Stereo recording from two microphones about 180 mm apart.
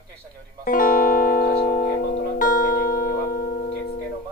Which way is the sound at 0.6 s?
50° left (ahead or behind).